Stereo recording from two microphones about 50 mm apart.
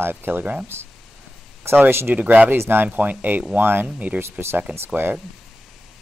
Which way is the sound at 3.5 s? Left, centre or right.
Right.